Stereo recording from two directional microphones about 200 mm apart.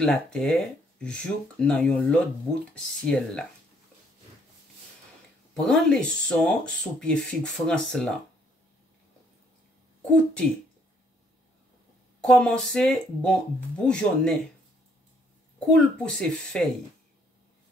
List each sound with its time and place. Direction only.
0.0 s speech: 5° left (ahead or behind)
5.5 s speech: centre (ahead or behind)
10.1 s speech: 5° left (ahead or behind)
12.3 s speech: centre (ahead or behind)
15.7 s speech: 5° left (ahead or behind)